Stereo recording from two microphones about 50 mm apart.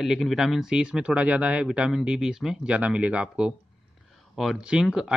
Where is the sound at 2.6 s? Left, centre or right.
Right.